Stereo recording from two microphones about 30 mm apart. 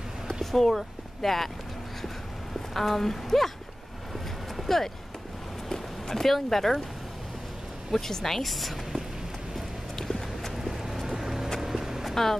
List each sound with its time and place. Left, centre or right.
0.4 s speech: centre
2.7 s speech: centre
4.6 s speech: centre
5.7 s a sound: centre
6.2 s speech: centre
7.9 s speech: centre
9.9 s a sound: centre
10.5 s vehicle: centre
11.1 s music: centre
11.6 s a sound: centre